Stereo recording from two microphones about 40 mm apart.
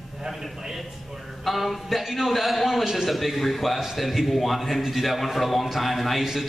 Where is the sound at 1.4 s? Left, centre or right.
Centre.